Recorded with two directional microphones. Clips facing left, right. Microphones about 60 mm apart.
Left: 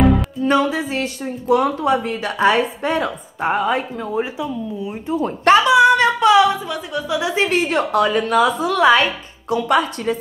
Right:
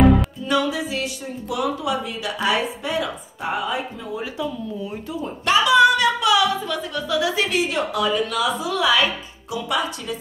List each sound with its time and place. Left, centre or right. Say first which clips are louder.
0.0 s music: even; centre
0.4 s a woman's voice: left 5 dB; left
4.2 s speech: left 3 dB; left
5.1 s a woman's voice: left 7 dB; left
5.9 s music: left 5 dB; left
6.7 s speech: left 1 dB; centre
7.4 s a woman's voice: left 4 dB; left